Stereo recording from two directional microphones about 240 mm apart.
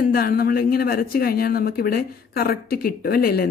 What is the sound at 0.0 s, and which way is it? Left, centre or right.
Speech, left.